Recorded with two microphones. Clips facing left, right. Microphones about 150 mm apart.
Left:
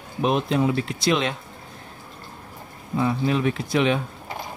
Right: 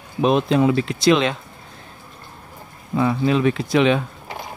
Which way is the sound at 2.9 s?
90° right.